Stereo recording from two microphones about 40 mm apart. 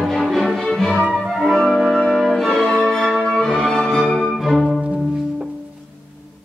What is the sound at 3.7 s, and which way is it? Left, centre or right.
Music, centre.